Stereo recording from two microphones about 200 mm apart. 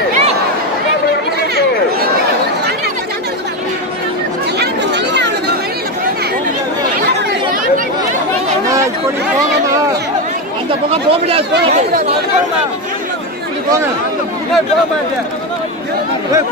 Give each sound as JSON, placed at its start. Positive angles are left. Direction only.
{"t": 4.6, "sound": "chatter", "side_deg": -60}
{"t": 10.9, "sound": "chatter", "side_deg": -30}